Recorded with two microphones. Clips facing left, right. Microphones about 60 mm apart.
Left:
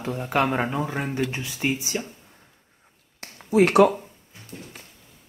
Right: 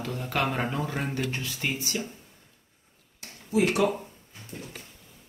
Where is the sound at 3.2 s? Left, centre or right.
Left.